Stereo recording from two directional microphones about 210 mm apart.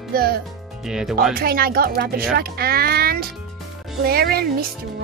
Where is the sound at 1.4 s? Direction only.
45° right (ahead or behind).